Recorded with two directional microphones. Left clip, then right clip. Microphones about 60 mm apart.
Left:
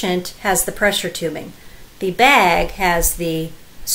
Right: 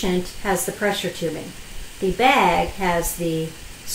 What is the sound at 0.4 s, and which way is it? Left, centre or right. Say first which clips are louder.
Speech: left 6 dB; left.